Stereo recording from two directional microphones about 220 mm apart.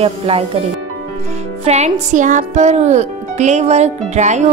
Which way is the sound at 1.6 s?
30° right (ahead or behind).